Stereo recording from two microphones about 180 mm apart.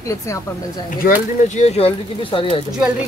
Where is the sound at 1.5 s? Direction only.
35° left (ahead or behind).